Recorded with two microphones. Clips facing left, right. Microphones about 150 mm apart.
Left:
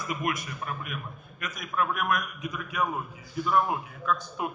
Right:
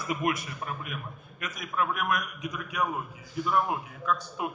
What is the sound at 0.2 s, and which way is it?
A man's voice, 25° right (ahead or behind).